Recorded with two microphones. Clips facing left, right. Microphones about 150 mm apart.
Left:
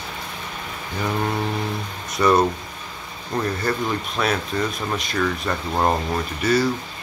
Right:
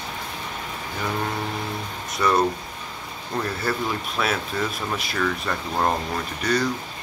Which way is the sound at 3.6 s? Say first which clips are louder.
Left 2 dB; 5° right (ahead or behind).